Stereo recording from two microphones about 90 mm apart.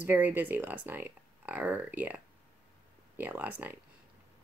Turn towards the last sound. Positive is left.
turn(degrees=-20)  # may be behind; listen again after turning